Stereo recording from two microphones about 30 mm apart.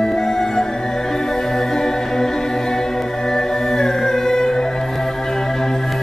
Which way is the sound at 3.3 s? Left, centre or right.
Centre.